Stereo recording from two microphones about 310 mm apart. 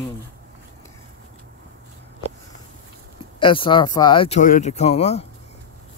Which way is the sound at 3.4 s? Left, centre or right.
Centre.